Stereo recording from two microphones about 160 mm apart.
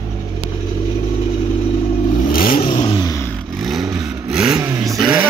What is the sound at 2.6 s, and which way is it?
Vehicle, 30° left (ahead or behind).